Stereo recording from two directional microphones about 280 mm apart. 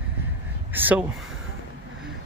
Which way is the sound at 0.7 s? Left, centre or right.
Centre.